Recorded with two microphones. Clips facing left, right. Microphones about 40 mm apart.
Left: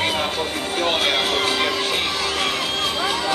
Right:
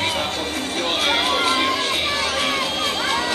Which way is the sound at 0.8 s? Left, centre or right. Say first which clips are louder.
Even; centre.